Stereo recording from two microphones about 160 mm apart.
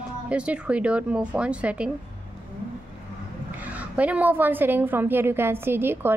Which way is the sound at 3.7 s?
10° right (ahead or behind).